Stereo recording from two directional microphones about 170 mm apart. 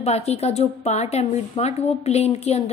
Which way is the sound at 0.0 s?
40° left (ahead or behind).